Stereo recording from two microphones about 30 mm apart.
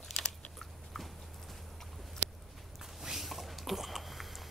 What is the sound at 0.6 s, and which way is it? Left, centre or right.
Biting, centre.